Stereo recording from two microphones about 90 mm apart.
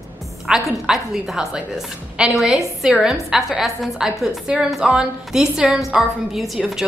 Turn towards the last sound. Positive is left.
turn(degrees=-5)  # may be behind; listen again after turning